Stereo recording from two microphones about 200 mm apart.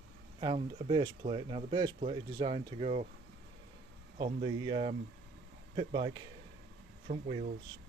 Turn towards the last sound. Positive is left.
turn(degrees=-35)  # may be behind; listen again after turning